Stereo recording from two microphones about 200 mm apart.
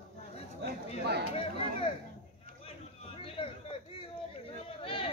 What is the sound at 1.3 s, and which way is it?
Speech, 30° left (ahead or behind).